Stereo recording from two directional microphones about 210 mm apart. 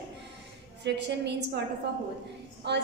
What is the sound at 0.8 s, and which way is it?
Speech, 55° right (ahead or behind).